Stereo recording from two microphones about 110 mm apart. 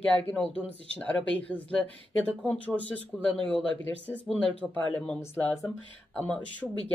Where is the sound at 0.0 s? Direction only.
10° left (ahead or behind).